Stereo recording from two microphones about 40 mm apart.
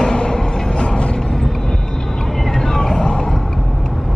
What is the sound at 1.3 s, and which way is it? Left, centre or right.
Vehicle, centre.